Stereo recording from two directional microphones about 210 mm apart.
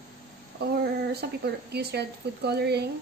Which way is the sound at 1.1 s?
50° right (ahead or behind).